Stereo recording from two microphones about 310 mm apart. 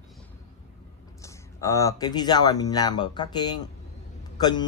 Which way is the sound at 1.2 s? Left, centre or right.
Centre.